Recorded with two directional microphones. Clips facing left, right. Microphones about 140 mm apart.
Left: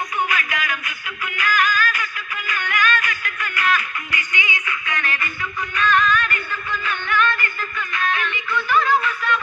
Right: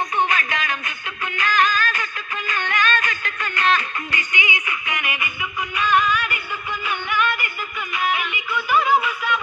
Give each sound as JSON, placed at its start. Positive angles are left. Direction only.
{"t": 0.2, "sound": "music", "side_deg": -30}